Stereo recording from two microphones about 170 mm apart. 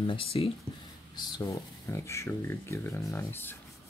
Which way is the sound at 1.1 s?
25° left (ahead or behind).